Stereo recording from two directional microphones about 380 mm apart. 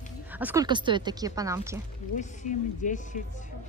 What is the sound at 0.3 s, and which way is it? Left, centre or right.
A woman's voice, centre.